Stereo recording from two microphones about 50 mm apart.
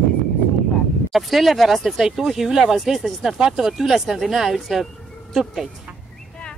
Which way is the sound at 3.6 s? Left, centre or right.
Centre.